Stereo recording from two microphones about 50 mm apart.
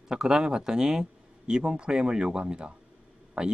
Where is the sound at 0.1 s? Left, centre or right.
Centre.